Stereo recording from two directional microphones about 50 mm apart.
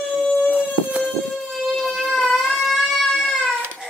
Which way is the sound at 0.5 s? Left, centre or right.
Right.